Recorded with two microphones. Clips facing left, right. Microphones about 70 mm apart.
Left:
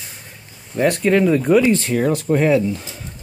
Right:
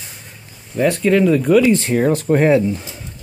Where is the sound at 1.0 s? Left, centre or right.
Centre.